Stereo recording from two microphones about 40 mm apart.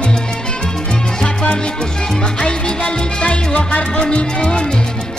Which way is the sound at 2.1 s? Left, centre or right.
Centre.